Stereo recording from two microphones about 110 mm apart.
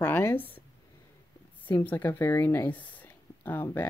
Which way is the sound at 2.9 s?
20° left (ahead or behind).